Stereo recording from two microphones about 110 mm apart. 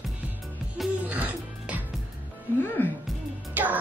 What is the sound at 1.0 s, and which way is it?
Music, 15° right (ahead or behind).